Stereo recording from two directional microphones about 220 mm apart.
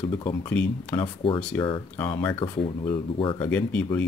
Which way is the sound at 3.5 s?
5° left (ahead or behind).